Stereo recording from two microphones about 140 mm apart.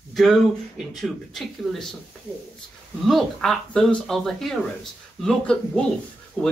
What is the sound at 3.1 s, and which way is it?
A man's voice, centre (ahead or behind).